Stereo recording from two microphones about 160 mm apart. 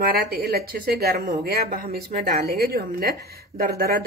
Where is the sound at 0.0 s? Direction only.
70° right (ahead or behind).